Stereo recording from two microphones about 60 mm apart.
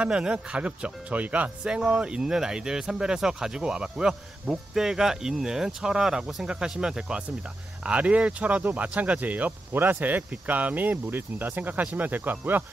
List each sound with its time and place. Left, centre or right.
0.0 s speech: centre; by 12.6 s right